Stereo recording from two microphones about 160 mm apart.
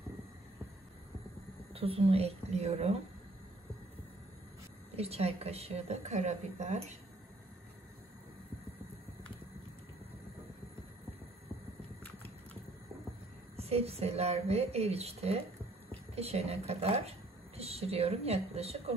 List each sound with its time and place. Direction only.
1.7 s a woman's voice: 35° right (ahead or behind)
4.9 s a woman's voice: 40° right (ahead or behind)
13.6 s a woman's voice: 40° right (ahead or behind)